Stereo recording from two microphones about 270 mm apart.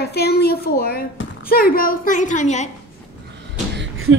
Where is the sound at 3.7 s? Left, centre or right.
Right.